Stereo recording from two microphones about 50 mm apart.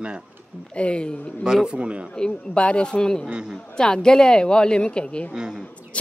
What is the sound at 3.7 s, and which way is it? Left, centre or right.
A woman's voice, centre.